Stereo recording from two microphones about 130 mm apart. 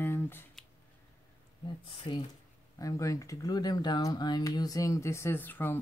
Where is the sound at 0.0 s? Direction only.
15° left (ahead or behind).